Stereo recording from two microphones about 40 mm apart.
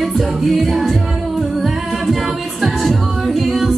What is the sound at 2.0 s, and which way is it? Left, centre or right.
A capella, centre.